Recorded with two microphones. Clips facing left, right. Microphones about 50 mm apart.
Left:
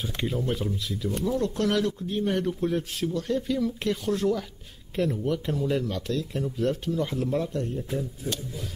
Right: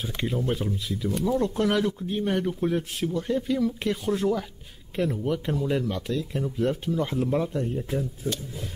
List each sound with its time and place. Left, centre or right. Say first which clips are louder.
0.0 s speech: right 1 dB; centre
1.3 s speech: right 2 dB; right
1.7 s a man's voice: right 1 dB; centre